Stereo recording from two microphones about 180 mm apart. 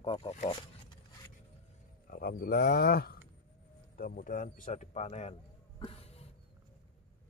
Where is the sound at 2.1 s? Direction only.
55° left (ahead or behind); by 5.3 s 35° left (ahead or behind).